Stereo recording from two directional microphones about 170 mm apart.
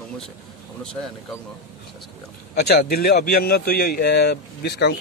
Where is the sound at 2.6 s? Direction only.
65° left (ahead or behind).